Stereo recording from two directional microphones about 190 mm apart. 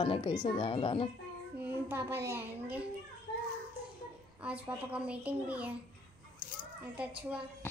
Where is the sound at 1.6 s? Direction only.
10° right (ahead or behind).